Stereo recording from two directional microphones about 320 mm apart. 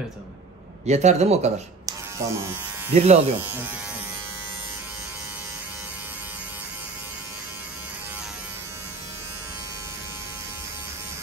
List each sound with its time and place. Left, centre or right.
0.8 s speech: right
2.2 s speech: centre
2.9 s speech: centre